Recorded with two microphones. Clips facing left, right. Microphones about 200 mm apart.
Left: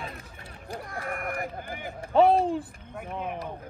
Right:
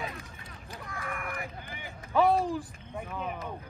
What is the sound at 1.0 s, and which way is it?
Speech, 50° left (ahead or behind).